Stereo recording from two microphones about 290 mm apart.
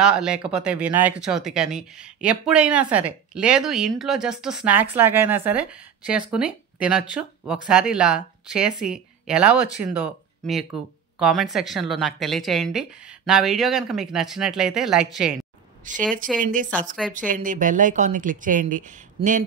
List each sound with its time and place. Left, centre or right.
0.0 s speech: centre
11.1 s speech: centre
15.8 s speech: right